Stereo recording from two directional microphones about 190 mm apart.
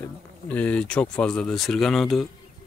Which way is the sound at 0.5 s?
10° left (ahead or behind).